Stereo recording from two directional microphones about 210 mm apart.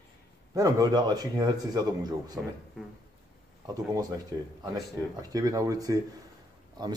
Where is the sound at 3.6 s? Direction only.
15° right (ahead or behind).